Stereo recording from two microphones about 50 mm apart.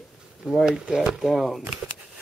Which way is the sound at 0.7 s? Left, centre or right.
Centre.